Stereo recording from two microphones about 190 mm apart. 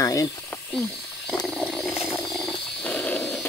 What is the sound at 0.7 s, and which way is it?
Wild animals, 5° left (ahead or behind).